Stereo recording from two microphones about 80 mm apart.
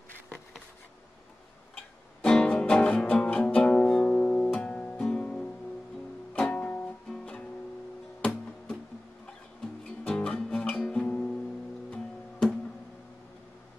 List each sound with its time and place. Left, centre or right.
2.2 s music: centre
7.1 s guitar: centre
8.2 s music: centre
10.0 s guitar: centre
11.9 s music: centre